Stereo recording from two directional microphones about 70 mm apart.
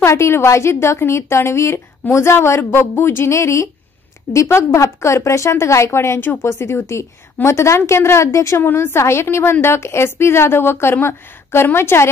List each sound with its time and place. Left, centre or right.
0.0 s a woman's voice: left
8.5 s a woman's voice: left